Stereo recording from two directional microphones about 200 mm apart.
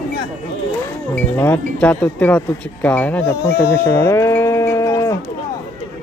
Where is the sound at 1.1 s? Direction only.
10° left (ahead or behind).